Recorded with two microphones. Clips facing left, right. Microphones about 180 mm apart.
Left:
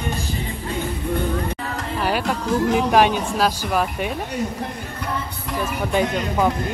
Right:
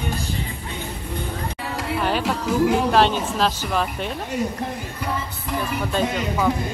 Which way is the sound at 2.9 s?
10° left (ahead or behind).